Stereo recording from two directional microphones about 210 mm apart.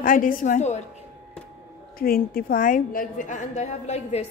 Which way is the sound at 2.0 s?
45° left (ahead or behind).